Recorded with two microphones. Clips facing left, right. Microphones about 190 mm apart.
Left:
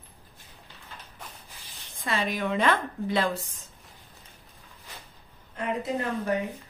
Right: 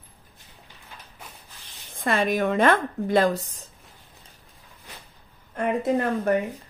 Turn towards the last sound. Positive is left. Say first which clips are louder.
# right 6 dB
turn(degrees=-55)  # may be behind; listen again after turning